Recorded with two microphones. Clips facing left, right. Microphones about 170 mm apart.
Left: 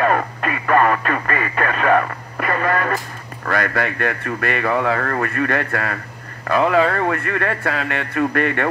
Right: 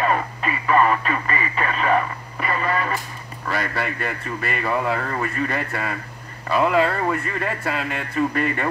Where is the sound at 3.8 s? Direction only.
70° left (ahead or behind).